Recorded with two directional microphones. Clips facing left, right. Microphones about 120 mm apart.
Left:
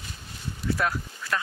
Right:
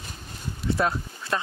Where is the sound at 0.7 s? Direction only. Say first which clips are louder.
Right 3 dB; 25° right (ahead or behind).